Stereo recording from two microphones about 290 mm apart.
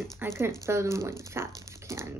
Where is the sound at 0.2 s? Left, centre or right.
Centre.